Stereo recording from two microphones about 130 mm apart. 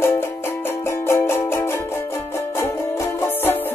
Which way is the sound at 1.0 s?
20° left (ahead or behind).